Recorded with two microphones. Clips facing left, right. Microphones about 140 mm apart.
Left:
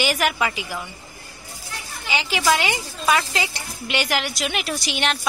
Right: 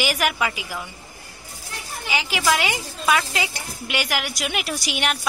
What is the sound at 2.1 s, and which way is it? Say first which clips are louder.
A woman's voice: left 1 dB; 5° right (ahead or behind).